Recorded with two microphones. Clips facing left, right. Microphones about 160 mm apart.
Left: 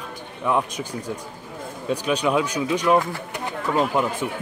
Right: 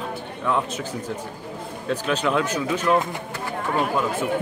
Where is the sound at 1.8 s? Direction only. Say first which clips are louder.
Left 1 dB; 15° left (ahead or behind).